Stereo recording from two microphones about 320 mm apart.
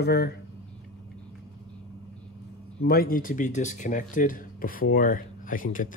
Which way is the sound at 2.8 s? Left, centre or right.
Left.